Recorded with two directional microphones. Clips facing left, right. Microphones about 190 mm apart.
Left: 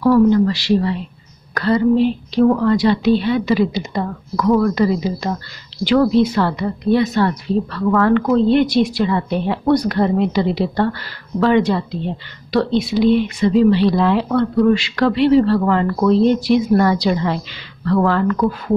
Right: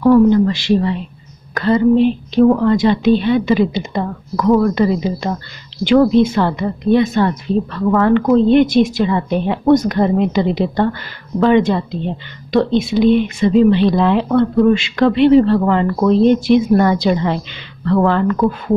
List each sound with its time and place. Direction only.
0.0 s a woman's voice: 20° right (ahead or behind)